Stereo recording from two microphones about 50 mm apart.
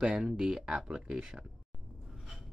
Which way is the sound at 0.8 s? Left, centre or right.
Right.